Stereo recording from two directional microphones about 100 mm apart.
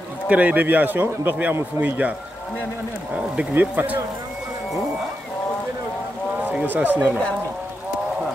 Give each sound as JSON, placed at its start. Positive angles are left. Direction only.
{"t": 0.3, "sound": "speech", "side_deg": -15}
{"t": 3.2, "sound": "speech", "side_deg": -15}
{"t": 6.4, "sound": "speech", "side_deg": -15}